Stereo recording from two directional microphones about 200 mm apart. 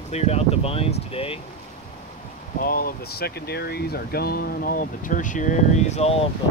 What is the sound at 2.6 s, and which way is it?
Speech, 50° left (ahead or behind).